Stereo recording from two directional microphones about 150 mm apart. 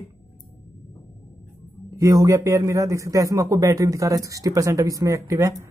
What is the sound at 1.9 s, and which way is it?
Speech, 20° right (ahead or behind).